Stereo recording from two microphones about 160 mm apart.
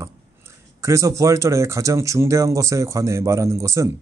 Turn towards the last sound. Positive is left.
turn(degrees=-20)  # may be behind; listen again after turning